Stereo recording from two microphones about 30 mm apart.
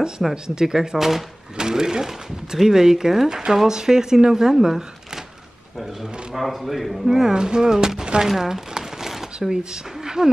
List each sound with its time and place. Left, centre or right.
0.3 s speech: right
0.9 s speech: centre
1.6 s speech: right
6.6 s a man's voice: centre
7.1 s speech: centre
7.3 s speech: right
8.3 s crumpling: centre
9.1 s a sound: centre
9.5 s speech: right